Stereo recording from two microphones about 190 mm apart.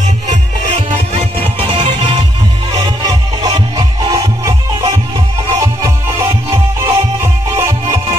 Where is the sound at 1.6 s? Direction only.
25° right (ahead or behind).